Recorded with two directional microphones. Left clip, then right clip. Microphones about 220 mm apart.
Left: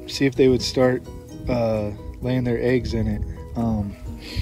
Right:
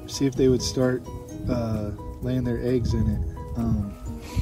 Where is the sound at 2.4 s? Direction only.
10° left (ahead or behind).